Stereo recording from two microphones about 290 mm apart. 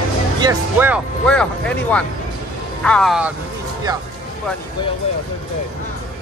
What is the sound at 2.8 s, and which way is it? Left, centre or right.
Speech, centre.